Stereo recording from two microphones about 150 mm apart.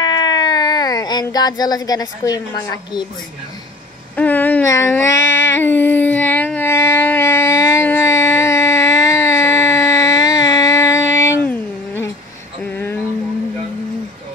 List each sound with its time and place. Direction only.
0.0 s baby cry: 30° left (ahead or behind)
1.2 s a woman's voice: 25° left (ahead or behind)
4.2 s a sound: 10° left (ahead or behind)